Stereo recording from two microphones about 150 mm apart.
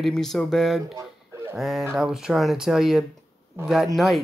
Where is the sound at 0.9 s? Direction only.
20° right (ahead or behind).